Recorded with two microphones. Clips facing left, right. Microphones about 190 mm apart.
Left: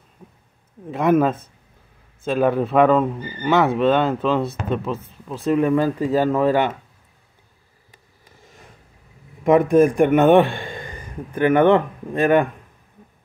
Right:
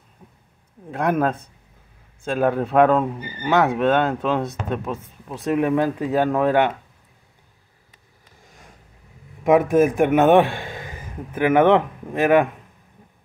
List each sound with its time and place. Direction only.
0.9 s speech: 5° left (ahead or behind)
2.3 s speech: centre (ahead or behind)
4.3 s speech: 15° right (ahead or behind)
5.4 s speech: 5° right (ahead or behind)
9.4 s a man's voice: centre (ahead or behind)